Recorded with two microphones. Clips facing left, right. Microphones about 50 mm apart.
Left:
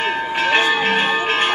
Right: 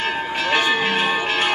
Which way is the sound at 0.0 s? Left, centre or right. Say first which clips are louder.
Left 3 dB; left.